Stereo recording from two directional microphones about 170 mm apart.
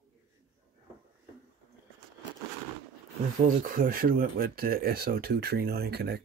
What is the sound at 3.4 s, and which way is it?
Speech, 55° right (ahead or behind).